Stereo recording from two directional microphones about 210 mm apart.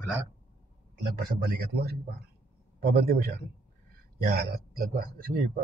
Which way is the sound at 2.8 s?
45° right (ahead or behind).